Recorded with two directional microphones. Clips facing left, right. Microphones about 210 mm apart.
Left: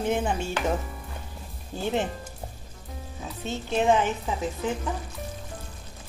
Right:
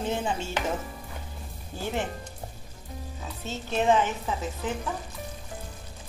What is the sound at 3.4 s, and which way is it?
Speech, 15° left (ahead or behind).